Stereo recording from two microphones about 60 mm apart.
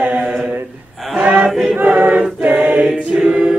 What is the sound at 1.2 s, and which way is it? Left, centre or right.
Chant, centre.